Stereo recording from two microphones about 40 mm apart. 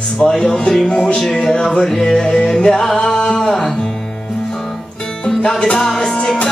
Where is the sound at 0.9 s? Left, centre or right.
Left.